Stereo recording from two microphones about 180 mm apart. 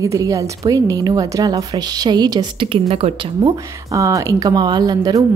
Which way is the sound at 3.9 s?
15° right (ahead or behind).